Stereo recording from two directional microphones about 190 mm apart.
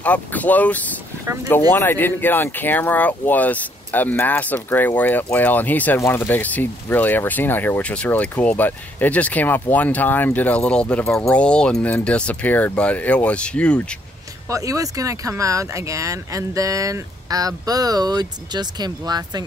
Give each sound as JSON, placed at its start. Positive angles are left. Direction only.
{"t": 0.0, "sound": "speech", "side_deg": 10}
{"t": 1.2, "sound": "speech", "side_deg": -15}
{"t": 1.7, "sound": "speech", "side_deg": 10}
{"t": 14.5, "sound": "speech", "side_deg": -15}